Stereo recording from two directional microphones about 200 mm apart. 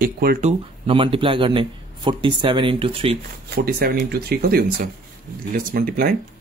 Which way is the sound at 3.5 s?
50° right (ahead or behind).